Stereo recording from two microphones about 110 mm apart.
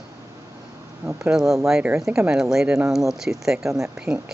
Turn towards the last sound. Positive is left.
turn(degrees=-5)  # may be behind; listen again after turning